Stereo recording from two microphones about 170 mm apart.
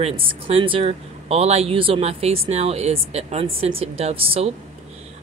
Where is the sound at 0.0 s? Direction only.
35° right (ahead or behind).